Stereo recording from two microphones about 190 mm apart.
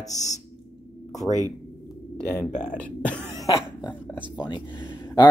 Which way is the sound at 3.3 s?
20° left (ahead or behind).